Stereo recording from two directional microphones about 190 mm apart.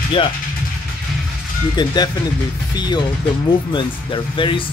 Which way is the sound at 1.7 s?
20° left (ahead or behind).